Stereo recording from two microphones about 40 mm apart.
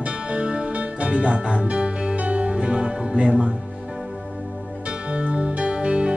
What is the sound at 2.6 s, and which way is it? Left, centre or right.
Music, centre.